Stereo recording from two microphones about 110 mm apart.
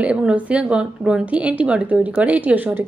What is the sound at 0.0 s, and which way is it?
Speech, 10° right (ahead or behind).